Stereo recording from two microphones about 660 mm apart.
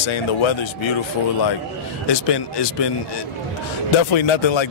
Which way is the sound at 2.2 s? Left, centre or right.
Left.